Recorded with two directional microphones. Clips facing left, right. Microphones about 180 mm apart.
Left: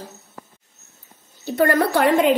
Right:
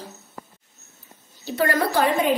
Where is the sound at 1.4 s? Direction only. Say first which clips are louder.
Left 4 dB; 50° left (ahead or behind); by 2.2 s 75° left (ahead or behind).